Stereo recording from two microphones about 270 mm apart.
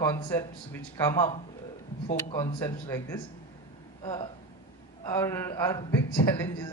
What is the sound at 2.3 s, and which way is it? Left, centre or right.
Speech, centre.